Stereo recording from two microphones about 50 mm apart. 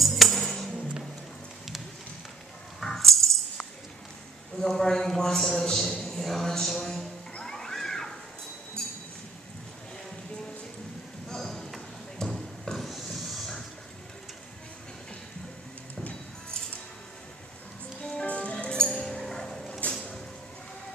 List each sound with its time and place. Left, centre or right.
0.0 s music: centre
2.8 s music: centre
4.6 s speech: centre
7.0 s music: centre
7.5 s a sound: centre
11.2 s a sound: centre
18.0 s music: left
19.9 s vehicle: centre